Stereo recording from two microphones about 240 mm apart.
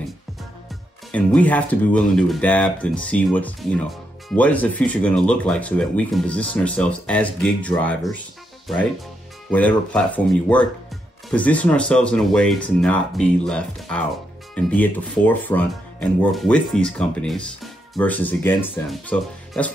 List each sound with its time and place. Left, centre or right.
1.1 s speech: centre
9.5 s speech: centre